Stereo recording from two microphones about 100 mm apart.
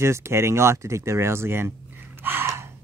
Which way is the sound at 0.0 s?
25° right (ahead or behind).